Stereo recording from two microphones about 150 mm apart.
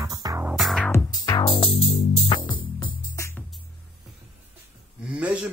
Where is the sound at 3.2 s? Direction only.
15° left (ahead or behind).